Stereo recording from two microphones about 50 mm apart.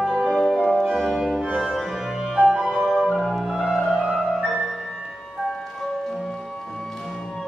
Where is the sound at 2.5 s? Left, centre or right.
Centre.